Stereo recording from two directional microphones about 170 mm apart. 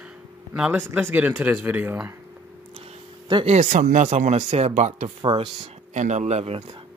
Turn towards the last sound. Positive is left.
turn(degrees=-35)  # may be behind; listen again after turning